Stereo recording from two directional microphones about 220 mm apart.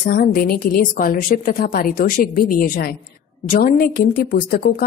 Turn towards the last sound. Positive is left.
turn(degrees=35)  # may be behind; listen again after turning